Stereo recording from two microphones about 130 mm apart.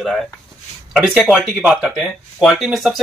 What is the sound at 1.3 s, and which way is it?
Speech, 5° right (ahead or behind).